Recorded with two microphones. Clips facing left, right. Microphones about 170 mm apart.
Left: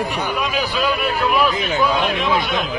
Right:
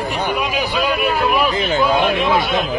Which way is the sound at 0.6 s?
10° right (ahead or behind).